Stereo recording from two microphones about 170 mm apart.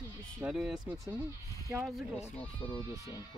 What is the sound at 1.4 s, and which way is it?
Speech, 20° right (ahead or behind).